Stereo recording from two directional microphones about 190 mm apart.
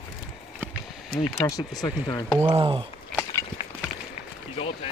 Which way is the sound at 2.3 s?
10° right (ahead or behind).